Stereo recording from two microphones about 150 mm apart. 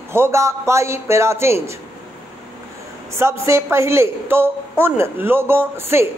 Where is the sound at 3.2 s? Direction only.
20° right (ahead or behind).